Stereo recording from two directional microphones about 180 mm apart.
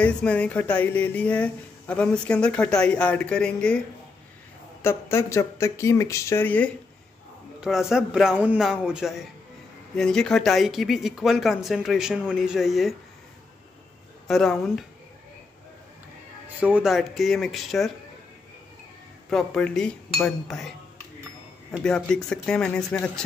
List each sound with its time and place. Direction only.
0.0 s speech: 5° left (ahead or behind)
4.8 s speech: 15° left (ahead or behind)
7.6 s speech: 5° right (ahead or behind)
14.2 s speech: 5° left (ahead or behind)
16.5 s speech: 10° right (ahead or behind)
19.3 s speech: 5° left (ahead or behind)
21.8 s speech: 5° left (ahead or behind)